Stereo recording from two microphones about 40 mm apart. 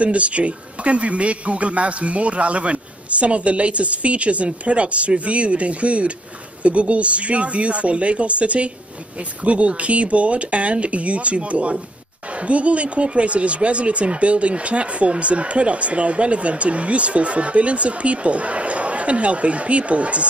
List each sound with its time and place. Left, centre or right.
0.0 s speech: right